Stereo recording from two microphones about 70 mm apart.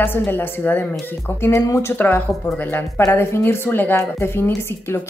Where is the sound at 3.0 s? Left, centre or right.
Left.